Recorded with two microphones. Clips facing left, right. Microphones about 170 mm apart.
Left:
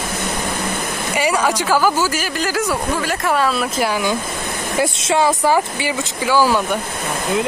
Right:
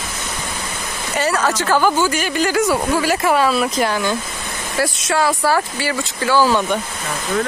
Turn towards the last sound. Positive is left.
turn(degrees=10)  # may be behind; listen again after turning